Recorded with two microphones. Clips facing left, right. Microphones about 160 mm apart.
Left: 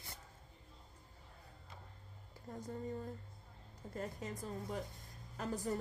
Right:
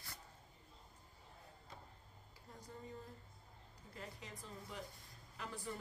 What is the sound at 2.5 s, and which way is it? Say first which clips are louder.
Speech: left 10 dB; 50° left (ahead or behind).